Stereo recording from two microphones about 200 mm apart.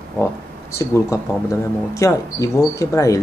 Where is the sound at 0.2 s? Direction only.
15° left (ahead or behind).